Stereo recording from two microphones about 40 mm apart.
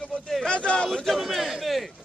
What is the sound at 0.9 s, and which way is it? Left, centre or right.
Speech, centre.